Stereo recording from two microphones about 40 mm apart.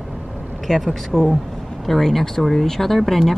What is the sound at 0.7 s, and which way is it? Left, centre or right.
Speech, centre.